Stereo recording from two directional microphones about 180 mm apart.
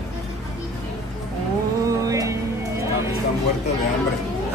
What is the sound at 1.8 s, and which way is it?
Music, 20° right (ahead or behind).